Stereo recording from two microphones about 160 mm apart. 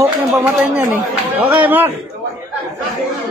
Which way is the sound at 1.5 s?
10° right (ahead or behind).